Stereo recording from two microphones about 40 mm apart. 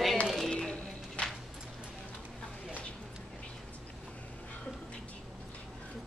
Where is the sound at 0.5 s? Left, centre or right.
Left.